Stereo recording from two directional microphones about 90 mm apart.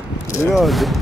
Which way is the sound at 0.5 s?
Centre (ahead or behind).